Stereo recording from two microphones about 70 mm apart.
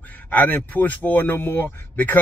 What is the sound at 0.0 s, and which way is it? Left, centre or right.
Speech, left.